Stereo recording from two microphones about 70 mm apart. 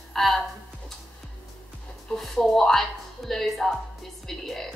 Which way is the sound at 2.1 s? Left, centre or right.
Centre.